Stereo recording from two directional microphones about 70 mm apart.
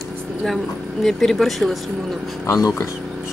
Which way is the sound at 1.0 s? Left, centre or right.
Centre.